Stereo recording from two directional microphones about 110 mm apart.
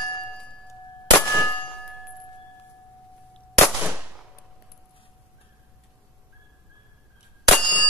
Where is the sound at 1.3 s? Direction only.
20° left (ahead or behind).